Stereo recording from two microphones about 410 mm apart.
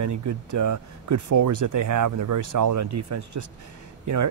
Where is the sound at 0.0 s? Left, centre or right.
Right.